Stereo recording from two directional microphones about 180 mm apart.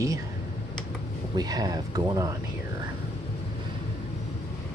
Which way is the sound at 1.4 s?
20° right (ahead or behind).